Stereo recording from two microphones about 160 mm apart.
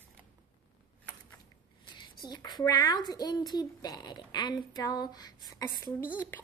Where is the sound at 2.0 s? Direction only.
25° left (ahead or behind).